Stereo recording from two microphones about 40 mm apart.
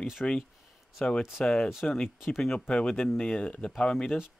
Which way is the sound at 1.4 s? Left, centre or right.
Left.